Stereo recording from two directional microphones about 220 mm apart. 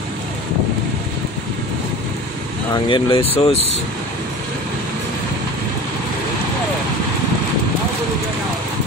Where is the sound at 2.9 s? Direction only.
25° left (ahead or behind).